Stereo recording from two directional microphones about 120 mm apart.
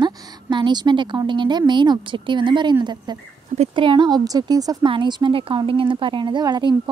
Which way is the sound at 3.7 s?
40° right (ahead or behind).